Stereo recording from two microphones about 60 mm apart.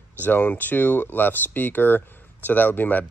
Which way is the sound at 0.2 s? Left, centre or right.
Left.